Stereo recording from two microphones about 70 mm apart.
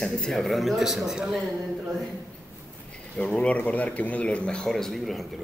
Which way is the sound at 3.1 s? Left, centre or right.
Centre.